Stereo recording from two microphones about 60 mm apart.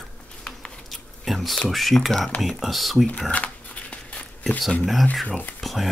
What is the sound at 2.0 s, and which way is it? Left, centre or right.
Speech, centre.